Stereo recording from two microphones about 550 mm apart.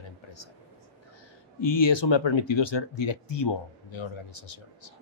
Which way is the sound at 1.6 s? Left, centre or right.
Left.